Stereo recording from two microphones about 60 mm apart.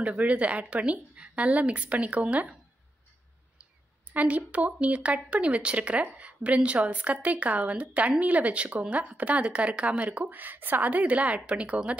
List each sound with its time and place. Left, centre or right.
0.0 s a woman's voice: right
4.1 s a woman's voice: right